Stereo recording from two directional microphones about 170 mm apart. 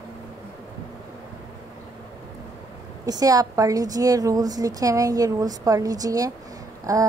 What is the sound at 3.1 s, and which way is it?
A woman's voice, 20° right (ahead or behind).